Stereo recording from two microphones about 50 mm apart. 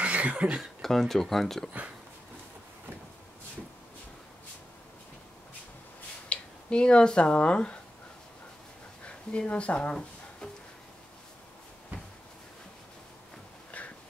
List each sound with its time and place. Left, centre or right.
0.0 s speech: right
0.6 s speech: centre
6.2 s speech: left
9.0 s speech: left
13.7 s a sound: left